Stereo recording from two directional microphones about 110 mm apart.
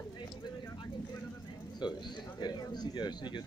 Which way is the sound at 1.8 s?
40° left (ahead or behind).